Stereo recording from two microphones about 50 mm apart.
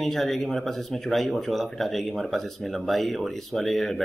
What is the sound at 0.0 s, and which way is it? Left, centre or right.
Speech, centre.